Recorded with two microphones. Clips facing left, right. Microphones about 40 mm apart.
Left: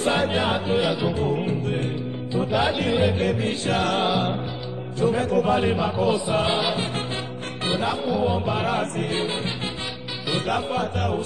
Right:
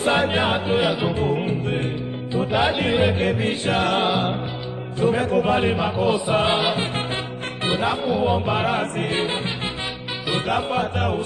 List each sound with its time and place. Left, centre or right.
0.0 s music: centre
9.0 s music: right
10.3 s music: right